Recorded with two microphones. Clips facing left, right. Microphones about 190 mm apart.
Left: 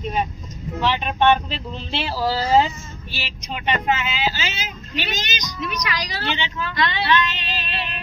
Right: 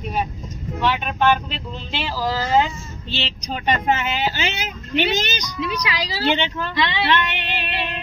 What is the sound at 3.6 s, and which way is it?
Speech, 50° right (ahead or behind).